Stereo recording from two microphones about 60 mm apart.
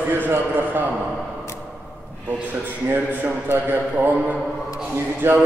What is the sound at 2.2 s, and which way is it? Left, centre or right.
A man's voice, right.